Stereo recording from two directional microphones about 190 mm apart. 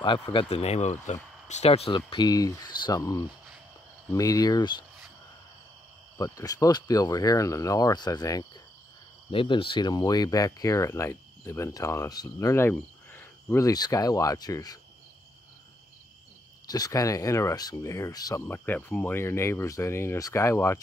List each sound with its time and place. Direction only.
0.0 s speech: 25° left (ahead or behind)
6.1 s speech: 20° left (ahead or behind)
16.6 s speech: 20° left (ahead or behind)